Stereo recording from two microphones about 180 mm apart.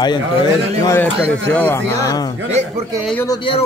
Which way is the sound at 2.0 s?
20° left (ahead or behind).